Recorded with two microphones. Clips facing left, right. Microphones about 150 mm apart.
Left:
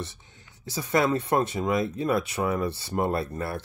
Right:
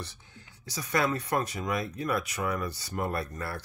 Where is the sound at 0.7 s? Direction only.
25° left (ahead or behind).